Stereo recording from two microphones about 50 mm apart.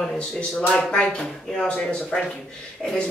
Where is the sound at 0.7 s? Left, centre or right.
Left.